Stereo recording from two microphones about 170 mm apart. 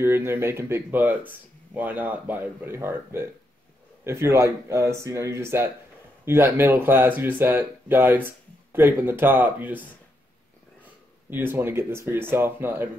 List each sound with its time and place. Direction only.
0.0 s speech: 15° right (ahead or behind)
11.2 s speech: 10° right (ahead or behind)